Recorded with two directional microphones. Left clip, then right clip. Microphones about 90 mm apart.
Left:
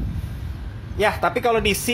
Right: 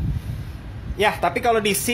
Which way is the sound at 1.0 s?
15° right (ahead or behind).